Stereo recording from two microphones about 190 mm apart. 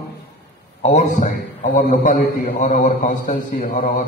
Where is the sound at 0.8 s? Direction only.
40° left (ahead or behind).